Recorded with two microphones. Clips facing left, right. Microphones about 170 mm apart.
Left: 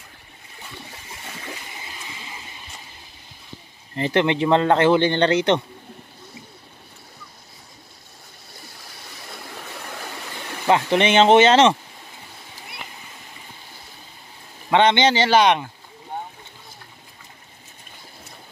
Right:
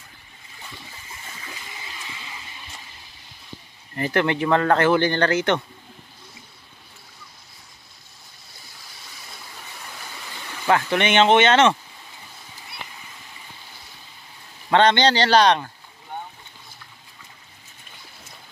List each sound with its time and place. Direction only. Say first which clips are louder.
3.9 s speech: left 2 dB; 25° left (ahead or behind)
10.7 s speech: left 2 dB; 30° left (ahead or behind)
14.7 s speech: even; 20° left (ahead or behind)